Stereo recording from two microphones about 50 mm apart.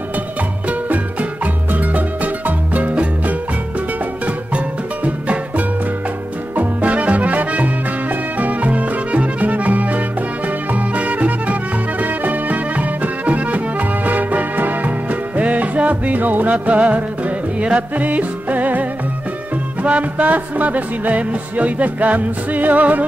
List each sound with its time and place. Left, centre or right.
0.7 s music: right
5.0 s music: right